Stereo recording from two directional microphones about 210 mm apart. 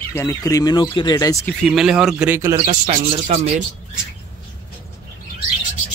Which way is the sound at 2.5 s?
30° right (ahead or behind).